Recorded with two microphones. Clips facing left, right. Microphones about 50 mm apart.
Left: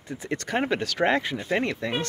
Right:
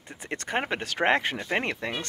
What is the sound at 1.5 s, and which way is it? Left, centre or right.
Speech, right.